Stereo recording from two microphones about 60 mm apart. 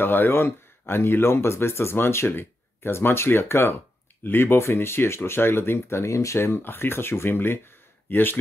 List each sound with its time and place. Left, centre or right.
0.0 s speech: left
6.6 s speech: left